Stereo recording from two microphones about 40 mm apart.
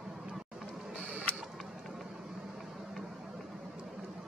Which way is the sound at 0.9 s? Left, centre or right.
Right.